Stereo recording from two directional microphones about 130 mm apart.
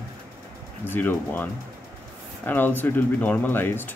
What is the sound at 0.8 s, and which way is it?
Speech, 15° left (ahead or behind).